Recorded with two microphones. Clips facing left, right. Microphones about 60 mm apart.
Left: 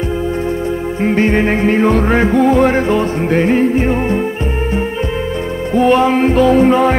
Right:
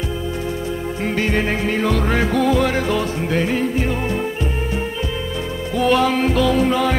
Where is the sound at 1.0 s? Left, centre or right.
Left.